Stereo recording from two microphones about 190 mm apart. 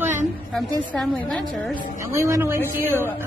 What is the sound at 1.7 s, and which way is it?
Speech, 45° left (ahead or behind).